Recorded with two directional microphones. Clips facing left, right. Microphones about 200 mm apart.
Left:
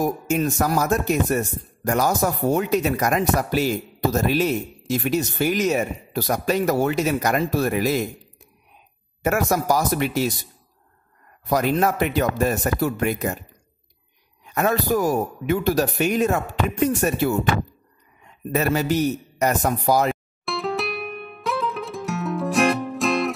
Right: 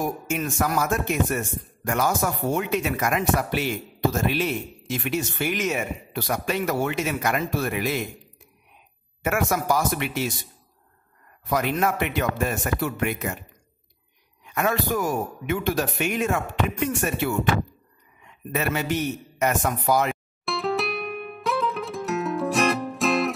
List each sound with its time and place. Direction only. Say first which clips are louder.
0.0 s speech: left 5 dB; 40° left (ahead or behind)
9.2 s speech: left 3 dB; 40° left (ahead or behind)
11.4 s speech: left 3 dB; 35° left (ahead or behind)
14.4 s a man's voice: left 3 dB; 40° left (ahead or behind)
20.4 s music: even; centre (ahead or behind)